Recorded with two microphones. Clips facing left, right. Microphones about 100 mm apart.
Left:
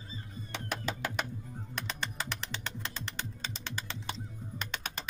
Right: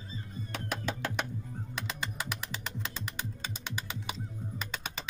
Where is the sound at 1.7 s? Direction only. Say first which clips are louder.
Even; 5° right (ahead or behind).